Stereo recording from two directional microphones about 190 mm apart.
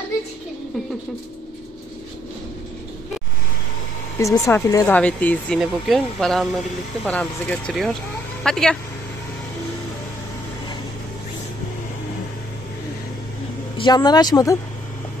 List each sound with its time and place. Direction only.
4.2 s speech: 15° left (ahead or behind)
13.7 s speech: 25° left (ahead or behind)